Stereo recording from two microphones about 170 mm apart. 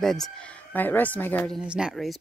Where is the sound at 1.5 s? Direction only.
5° right (ahead or behind).